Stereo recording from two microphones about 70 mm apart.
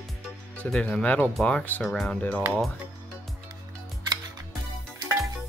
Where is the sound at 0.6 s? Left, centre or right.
Centre.